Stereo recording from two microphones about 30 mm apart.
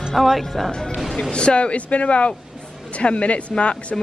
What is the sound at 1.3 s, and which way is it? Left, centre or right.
Speech, left.